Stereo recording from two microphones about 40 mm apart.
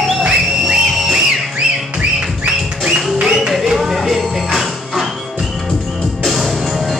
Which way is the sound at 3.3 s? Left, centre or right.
Centre.